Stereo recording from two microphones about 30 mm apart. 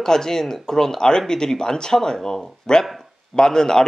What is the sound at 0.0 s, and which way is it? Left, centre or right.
Speech, centre.